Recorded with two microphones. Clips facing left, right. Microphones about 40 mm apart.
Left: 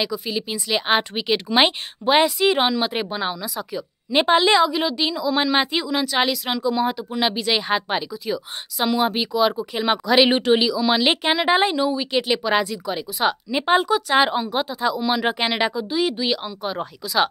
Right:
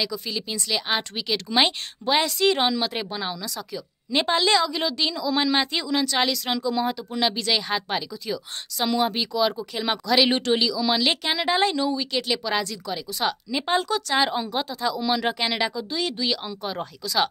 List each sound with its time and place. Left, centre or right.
0.0 s speech: centre
0.7 s a woman's voice: left
4.7 s a woman's voice: centre
15.3 s speech: left